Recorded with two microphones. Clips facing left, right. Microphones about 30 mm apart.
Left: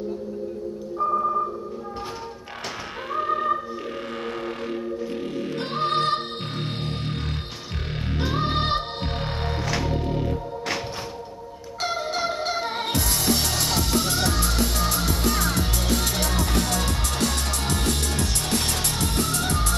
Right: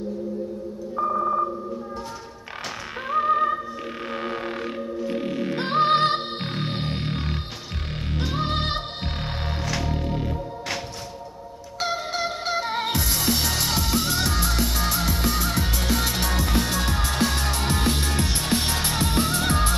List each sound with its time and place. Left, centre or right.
3.1 s music: centre
4.1 s didgeridoo: centre
5.0 s music: centre
8.1 s music: centre
11.8 s music: centre